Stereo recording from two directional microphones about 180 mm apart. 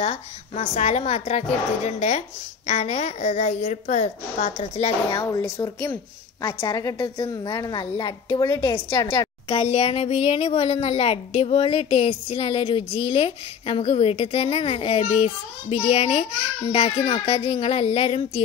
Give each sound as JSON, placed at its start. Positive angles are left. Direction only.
{"t": 0.0, "sound": "a woman's voice", "side_deg": 35}
{"t": 5.1, "sound": "a woman's voice", "side_deg": 20}